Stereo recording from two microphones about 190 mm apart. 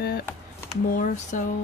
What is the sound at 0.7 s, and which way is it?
Speech, 40° left (ahead or behind).